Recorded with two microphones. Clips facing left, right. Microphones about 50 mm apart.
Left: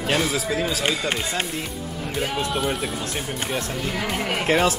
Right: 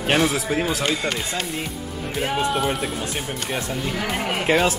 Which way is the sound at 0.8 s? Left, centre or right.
Left.